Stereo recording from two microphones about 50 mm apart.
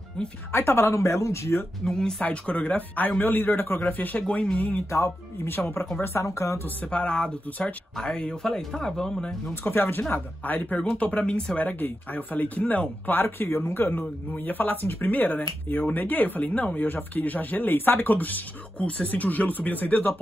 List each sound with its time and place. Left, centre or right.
0.5 s speech: left
1.9 s speech: centre
2.2 s speech: left
3.9 s speech: left
4.3 s speech: left
4.9 s speech: left
6.1 s speech: left
6.8 s speech: left
9.6 s speech: left
10.8 s speech: left
11.6 s speech: left